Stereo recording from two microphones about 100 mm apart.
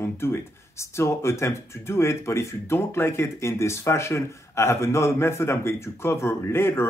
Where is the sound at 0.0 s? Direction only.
25° left (ahead or behind).